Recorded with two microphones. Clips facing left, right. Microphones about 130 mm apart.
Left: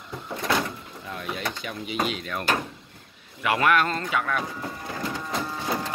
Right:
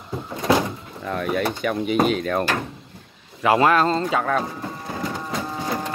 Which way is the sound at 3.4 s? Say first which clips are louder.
Right 5 dB; 30° right (ahead or behind).